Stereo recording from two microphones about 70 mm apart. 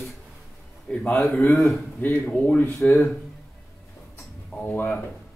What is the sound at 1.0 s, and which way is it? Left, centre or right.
Speech, left.